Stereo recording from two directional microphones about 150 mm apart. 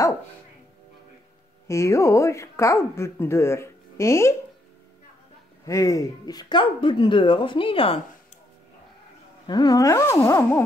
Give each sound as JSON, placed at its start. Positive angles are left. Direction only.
{"t": 1.7, "sound": "speech", "side_deg": 20}
{"t": 5.7, "sound": "speech", "side_deg": 20}
{"t": 9.5, "sound": "speech", "side_deg": 25}